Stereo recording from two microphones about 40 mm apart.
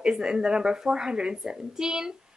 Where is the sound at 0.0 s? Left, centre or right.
Centre.